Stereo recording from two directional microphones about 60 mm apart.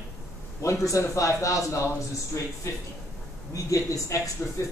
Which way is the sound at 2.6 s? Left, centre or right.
Left.